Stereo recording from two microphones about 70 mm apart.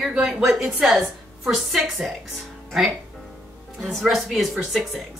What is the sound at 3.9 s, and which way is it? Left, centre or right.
Speech, centre.